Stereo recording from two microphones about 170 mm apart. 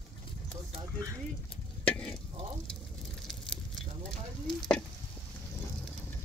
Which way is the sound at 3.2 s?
5° left (ahead or behind).